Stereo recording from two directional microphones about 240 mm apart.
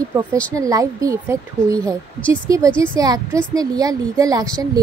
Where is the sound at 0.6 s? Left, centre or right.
Centre.